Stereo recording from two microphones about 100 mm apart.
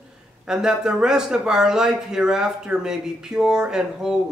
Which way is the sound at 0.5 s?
5° right (ahead or behind).